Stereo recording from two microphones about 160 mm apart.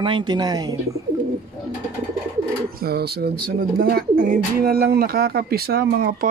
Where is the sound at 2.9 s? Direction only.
80° right.